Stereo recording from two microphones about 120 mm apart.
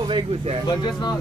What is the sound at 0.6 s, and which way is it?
Speech, 35° left (ahead or behind).